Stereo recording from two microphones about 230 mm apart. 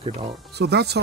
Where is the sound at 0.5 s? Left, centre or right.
Right.